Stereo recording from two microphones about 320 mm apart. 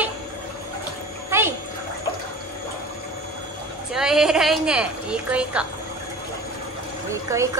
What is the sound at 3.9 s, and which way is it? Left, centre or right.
A woman's voice, centre.